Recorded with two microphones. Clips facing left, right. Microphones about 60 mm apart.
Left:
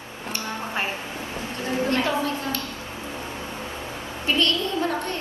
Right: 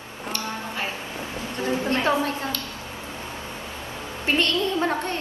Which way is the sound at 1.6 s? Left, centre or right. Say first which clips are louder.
Even; right.